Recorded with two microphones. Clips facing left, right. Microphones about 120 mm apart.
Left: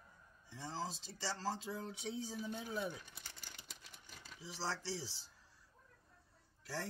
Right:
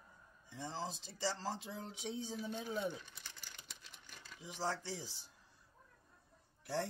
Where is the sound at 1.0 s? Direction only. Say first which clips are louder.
Right 2 dB; 15° right (ahead or behind).